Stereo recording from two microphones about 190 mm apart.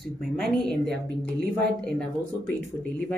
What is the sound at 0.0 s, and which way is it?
Speech, centre (ahead or behind).